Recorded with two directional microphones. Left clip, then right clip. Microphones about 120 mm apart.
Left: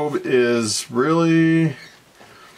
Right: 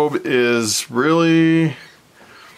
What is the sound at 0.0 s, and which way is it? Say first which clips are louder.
A man's voice: right 2 dB; 35° right (ahead or behind).